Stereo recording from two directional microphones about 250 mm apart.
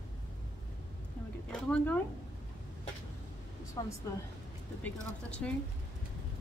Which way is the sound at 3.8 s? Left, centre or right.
Centre.